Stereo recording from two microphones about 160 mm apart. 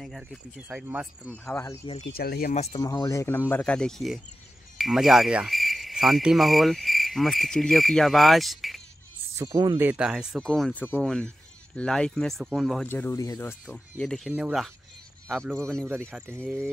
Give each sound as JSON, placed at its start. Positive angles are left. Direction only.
{"t": 0.0, "sound": "speech", "side_deg": 0}
{"t": 1.4, "sound": "speech", "side_deg": 15}
{"t": 2.1, "sound": "speech", "side_deg": 75}
{"t": 2.5, "sound": "speech", "side_deg": 40}
{"t": 2.8, "sound": "speech", "side_deg": 20}
{"t": 9.4, "sound": "speech", "side_deg": -20}
{"t": 9.8, "sound": "speech", "side_deg": -10}
{"t": 12.8, "sound": "speech", "side_deg": 10}
{"t": 13.9, "sound": "speech", "side_deg": 5}
{"t": 16.1, "sound": "speech", "side_deg": -10}